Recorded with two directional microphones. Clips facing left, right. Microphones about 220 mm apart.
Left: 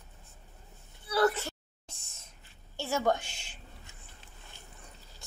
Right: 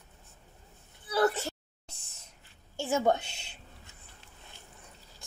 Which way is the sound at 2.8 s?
20° right (ahead or behind).